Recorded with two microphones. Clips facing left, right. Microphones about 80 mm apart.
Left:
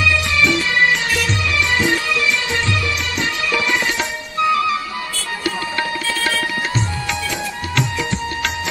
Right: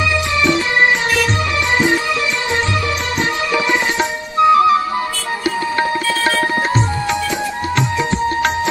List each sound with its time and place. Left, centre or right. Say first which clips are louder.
0.0 s music: right 1 dB; right
4.4 s music: right 7 dB; right